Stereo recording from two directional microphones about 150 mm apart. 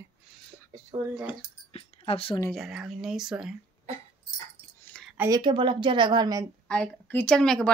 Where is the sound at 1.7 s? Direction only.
40° left (ahead or behind).